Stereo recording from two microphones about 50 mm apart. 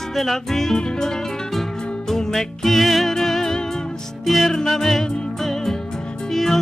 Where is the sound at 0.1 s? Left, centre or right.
Centre.